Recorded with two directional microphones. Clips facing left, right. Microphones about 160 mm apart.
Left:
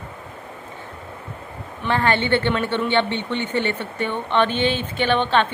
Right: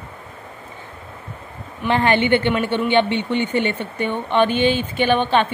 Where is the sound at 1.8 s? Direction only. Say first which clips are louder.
Right 3 dB; 15° right (ahead or behind).